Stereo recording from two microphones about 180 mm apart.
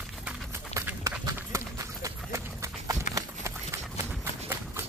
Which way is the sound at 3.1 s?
15° right (ahead or behind).